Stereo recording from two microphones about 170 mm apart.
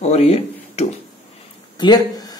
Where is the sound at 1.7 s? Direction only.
25° left (ahead or behind).